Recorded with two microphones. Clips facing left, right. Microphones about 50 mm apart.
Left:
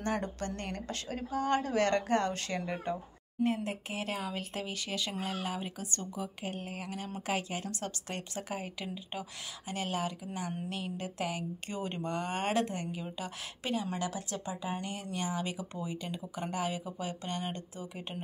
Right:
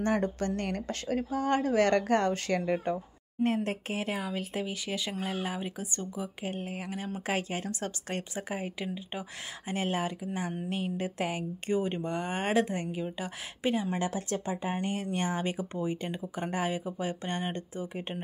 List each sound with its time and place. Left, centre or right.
0.0 s speech: right
3.4 s speech: right
4.0 s speech: centre
7.2 s speech: right
8.4 s speech: right